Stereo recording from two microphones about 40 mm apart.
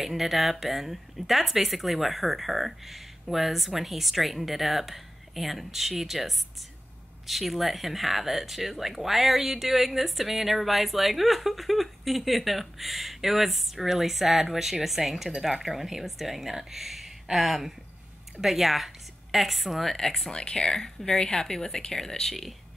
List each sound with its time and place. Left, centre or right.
0.0 s speech: centre
20.2 s a woman's voice: left; by 22.6 s centre